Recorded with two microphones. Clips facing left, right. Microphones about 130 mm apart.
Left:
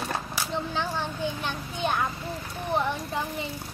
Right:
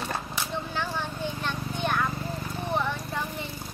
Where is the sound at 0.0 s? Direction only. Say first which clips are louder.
Left 1 dB; 10° left (ahead or behind).